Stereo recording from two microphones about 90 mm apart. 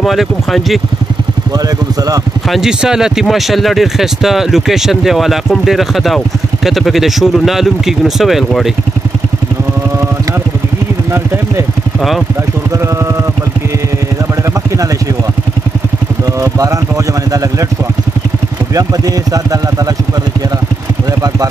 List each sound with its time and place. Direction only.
0.0 s speech: centre (ahead or behind)
2.5 s speech: 5° right (ahead or behind)
16.3 s speech: 40° right (ahead or behind)
18.8 s speech: 40° right (ahead or behind)